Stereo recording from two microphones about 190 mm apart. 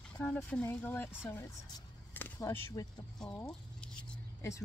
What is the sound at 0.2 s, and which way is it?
A woman's voice, 5° left (ahead or behind).